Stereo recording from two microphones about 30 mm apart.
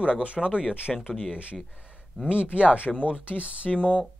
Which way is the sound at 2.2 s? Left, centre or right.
Right.